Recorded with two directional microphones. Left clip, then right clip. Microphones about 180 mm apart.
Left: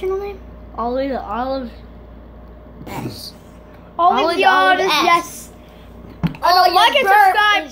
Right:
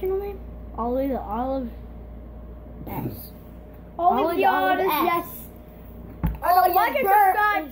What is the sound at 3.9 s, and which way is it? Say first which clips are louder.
Speech: left 6 dB; 20° left (ahead or behind).